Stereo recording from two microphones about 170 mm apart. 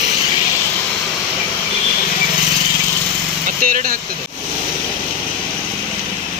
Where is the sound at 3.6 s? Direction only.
55° right (ahead or behind).